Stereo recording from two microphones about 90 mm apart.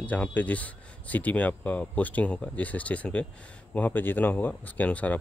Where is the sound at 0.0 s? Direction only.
15° left (ahead or behind).